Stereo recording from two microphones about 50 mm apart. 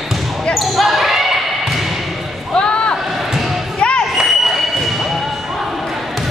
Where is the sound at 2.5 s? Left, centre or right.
Centre.